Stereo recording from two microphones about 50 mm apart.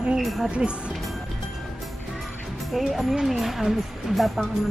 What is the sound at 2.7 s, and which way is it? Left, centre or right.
Speech, centre.